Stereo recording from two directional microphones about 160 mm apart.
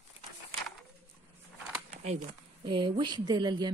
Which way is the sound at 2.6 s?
30° right (ahead or behind).